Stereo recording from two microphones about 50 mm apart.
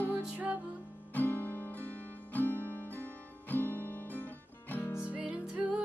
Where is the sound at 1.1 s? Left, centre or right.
Left.